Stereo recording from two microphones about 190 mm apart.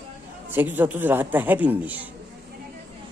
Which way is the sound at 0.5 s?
10° right (ahead or behind).